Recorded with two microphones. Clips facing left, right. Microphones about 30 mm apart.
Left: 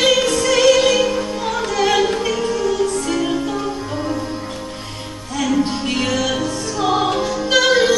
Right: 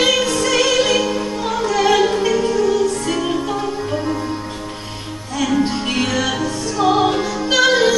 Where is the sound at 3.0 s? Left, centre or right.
Centre.